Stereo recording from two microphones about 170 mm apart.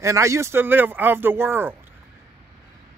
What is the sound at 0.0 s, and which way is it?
Speech, 15° right (ahead or behind).